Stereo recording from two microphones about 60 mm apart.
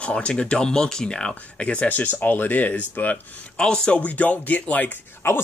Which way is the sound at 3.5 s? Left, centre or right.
Centre.